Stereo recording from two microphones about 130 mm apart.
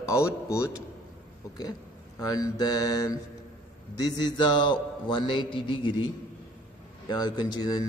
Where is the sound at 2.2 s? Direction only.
30° left (ahead or behind).